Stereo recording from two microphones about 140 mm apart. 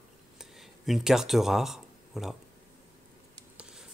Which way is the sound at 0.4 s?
Centre (ahead or behind).